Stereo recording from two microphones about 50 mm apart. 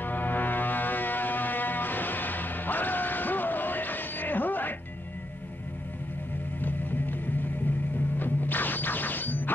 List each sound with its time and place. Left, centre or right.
0.0 s foghorn: left
6.6 s music: left
8.2 s music: left